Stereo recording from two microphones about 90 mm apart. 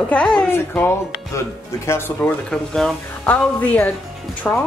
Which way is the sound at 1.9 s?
25° left (ahead or behind).